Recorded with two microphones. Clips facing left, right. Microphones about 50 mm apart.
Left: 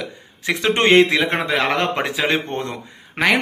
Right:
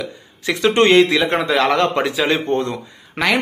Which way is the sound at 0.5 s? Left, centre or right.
Left.